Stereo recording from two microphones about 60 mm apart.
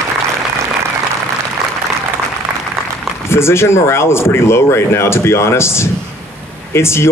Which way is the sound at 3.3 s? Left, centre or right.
Left.